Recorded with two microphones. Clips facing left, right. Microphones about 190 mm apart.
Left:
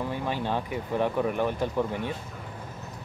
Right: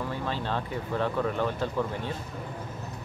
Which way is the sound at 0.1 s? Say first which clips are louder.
Left 2 dB; 15° left (ahead or behind).